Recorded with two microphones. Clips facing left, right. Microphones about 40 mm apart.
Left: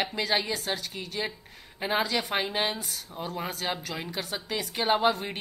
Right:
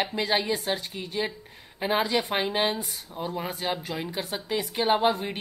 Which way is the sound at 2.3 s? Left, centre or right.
Centre.